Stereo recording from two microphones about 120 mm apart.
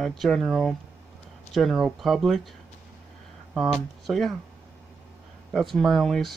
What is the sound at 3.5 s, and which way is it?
Speech, centre (ahead or behind).